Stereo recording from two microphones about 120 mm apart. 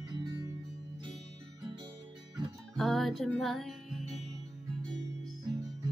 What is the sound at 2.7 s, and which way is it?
Music, centre (ahead or behind).